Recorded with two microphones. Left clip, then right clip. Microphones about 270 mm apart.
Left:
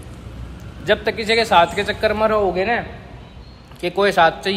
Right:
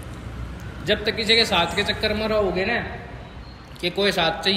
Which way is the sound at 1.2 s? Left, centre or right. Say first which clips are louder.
Left 1 dB; centre.